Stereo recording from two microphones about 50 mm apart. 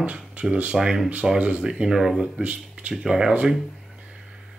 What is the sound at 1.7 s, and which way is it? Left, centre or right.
Speech, centre.